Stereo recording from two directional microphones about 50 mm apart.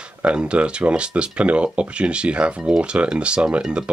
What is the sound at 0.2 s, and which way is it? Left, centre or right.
Speech, right.